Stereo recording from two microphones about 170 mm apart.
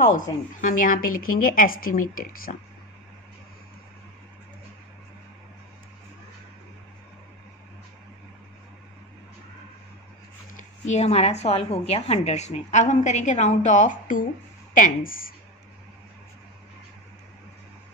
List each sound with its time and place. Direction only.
0.0 s a woman's voice: 50° left (ahead or behind)
10.5 s speech: 40° left (ahead or behind)